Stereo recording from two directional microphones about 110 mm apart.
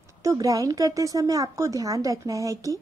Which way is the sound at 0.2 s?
30° right (ahead or behind).